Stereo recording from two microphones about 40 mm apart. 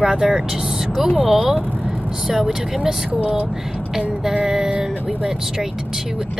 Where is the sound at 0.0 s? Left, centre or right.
Centre.